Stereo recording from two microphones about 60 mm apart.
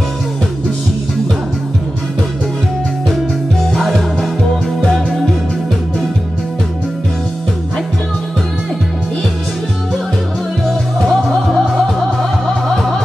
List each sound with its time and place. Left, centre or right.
3.7 s music: centre
11.0 s music: centre